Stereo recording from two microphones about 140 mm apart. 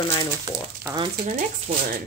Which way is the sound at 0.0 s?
35° left (ahead or behind).